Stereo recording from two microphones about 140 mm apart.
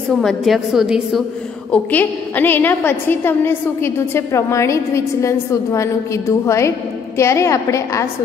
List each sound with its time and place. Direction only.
0.1 s a woman's voice: centre (ahead or behind)
1.7 s a woman's voice: 10° left (ahead or behind)